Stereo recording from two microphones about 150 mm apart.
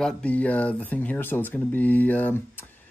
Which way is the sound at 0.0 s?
10° left (ahead or behind).